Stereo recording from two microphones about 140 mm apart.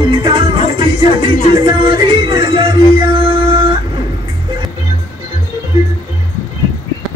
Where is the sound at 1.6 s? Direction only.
35° right (ahead or behind).